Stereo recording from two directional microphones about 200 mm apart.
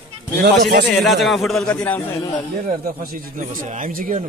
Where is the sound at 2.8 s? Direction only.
45° right (ahead or behind).